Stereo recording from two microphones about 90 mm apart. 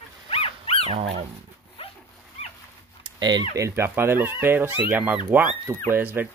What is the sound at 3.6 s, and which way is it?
Speech, 30° right (ahead or behind).